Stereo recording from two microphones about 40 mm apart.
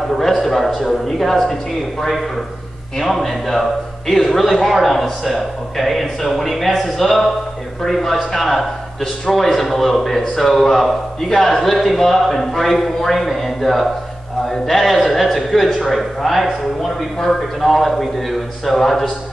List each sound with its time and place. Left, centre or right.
0.1 s a man's voice: centre